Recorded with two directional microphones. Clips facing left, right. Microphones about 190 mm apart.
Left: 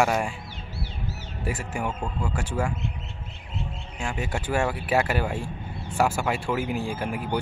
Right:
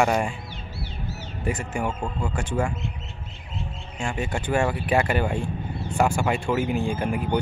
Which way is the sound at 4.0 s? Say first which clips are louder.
Right 2 dB; 5° left (ahead or behind).